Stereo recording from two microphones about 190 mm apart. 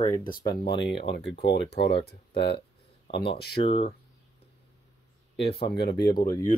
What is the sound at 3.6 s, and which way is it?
Speech, 30° left (ahead or behind).